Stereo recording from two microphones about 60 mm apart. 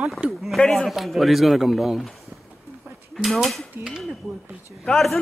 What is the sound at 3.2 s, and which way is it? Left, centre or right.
Speech, centre.